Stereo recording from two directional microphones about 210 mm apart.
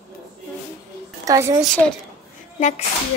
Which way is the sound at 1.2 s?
15° right (ahead or behind).